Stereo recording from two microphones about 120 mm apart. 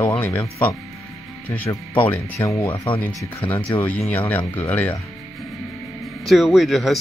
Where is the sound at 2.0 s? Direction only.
15° left (ahead or behind).